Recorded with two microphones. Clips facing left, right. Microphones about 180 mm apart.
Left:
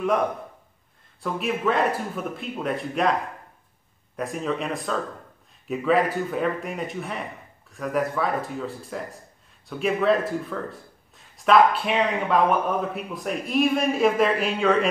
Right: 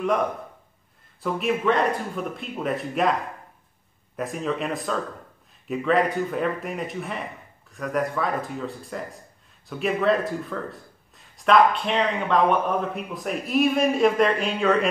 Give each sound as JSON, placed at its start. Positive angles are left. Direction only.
{"t": 1.2, "sound": "speech", "side_deg": 0}
{"t": 4.2, "sound": "speech", "side_deg": 0}